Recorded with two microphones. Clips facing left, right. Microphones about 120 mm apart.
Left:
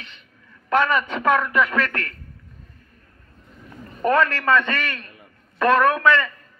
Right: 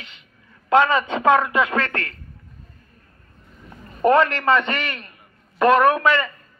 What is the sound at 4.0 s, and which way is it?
A man's voice, 20° right (ahead or behind).